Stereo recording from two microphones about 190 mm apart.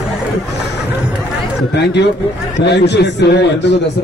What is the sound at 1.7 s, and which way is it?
A man's voice, 65° left (ahead or behind).